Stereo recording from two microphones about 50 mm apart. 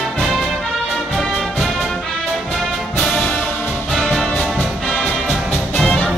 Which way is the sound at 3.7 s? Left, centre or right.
Centre.